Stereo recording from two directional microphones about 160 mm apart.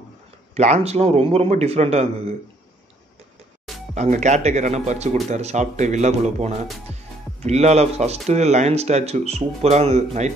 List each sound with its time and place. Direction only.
0.6 s a man's voice: 45° right (ahead or behind)
3.9 s speech: 45° right (ahead or behind)